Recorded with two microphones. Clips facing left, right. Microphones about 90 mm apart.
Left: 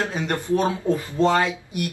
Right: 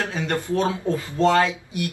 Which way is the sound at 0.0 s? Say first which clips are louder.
Even; 15° left (ahead or behind).